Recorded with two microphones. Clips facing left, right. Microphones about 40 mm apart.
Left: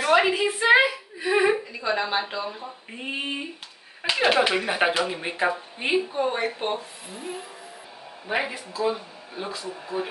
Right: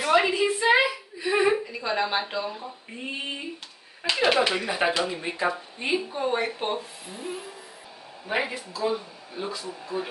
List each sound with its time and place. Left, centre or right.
0.0 s a woman's voice: centre
0.4 s speech: left
1.2 s a sound: centre
1.7 s speech: centre
6.1 s speech: centre